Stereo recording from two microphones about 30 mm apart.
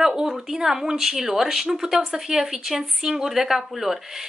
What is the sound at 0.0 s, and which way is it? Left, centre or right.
Speech, right.